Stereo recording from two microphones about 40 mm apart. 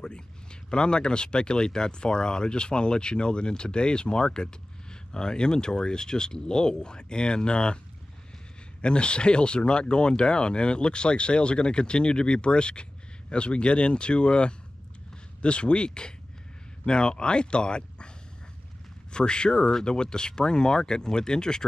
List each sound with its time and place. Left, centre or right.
0.0 s speech: left
8.8 s speech: left
19.1 s speech: left